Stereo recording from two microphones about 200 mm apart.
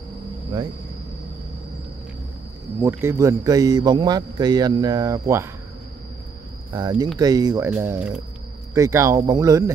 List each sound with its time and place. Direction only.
2.8 s a man's voice: 10° right (ahead or behind)
6.7 s a man's voice: 20° right (ahead or behind)